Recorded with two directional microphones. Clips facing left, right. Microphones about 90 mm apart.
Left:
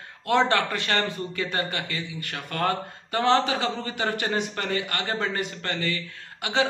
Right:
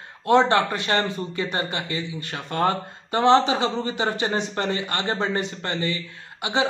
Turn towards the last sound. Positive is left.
turn(degrees=-20)  # may be behind; listen again after turning